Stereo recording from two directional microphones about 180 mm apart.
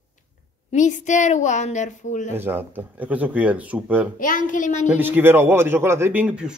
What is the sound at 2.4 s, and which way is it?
Speech, 10° right (ahead or behind).